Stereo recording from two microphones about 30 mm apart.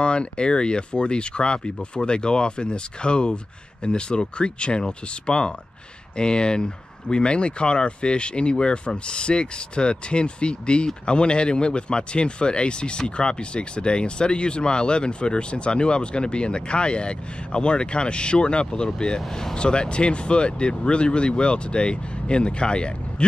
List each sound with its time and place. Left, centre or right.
0.0 s speech: left